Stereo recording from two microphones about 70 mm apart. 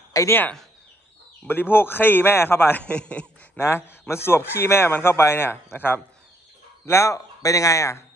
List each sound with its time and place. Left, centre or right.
0.2 s speech: left
1.5 s a man's voice: left
2.8 s a man's voice: centre
3.5 s speech: left
6.9 s speech: left